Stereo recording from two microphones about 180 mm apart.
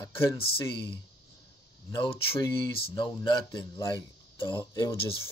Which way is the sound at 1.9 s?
25° left (ahead or behind).